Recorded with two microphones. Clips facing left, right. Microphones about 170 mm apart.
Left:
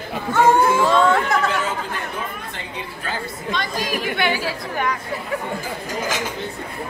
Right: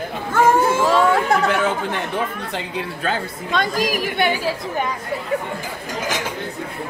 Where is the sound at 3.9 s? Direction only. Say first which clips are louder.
Right 2 dB; 10° right (ahead or behind).